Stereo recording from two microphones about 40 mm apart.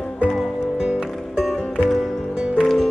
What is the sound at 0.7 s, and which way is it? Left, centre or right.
Music, right.